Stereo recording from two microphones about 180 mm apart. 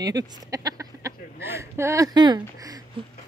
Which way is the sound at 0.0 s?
20° right (ahead or behind).